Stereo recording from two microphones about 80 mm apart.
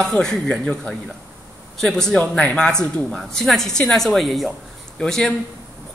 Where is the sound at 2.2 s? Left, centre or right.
Centre.